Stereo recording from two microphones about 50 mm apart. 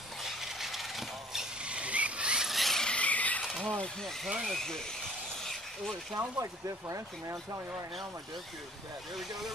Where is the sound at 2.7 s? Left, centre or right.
Left.